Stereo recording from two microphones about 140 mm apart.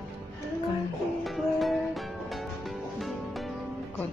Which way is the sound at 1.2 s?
Centre (ahead or behind).